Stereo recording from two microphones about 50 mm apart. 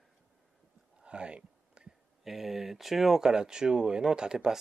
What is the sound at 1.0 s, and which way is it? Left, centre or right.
Whispering, right.